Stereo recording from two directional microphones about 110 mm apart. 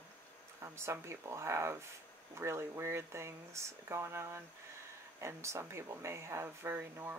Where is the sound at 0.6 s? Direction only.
25° right (ahead or behind).